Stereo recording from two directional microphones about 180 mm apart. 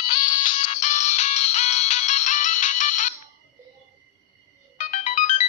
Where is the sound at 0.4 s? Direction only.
40° left (ahead or behind).